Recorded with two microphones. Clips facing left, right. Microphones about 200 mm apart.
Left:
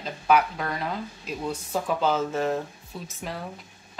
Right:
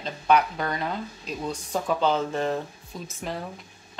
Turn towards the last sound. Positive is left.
turn(degrees=0)  # may be behind; listen again after turning